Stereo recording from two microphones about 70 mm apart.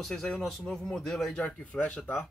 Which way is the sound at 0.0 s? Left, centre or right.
Centre.